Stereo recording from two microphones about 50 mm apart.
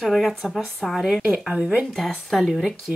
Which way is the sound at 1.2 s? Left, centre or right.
Right.